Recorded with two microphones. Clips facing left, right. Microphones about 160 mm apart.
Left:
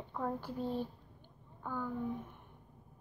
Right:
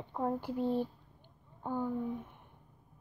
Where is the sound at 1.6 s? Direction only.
25° right (ahead or behind).